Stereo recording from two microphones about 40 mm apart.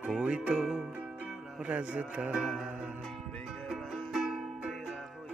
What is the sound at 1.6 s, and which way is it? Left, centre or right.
Speech, right.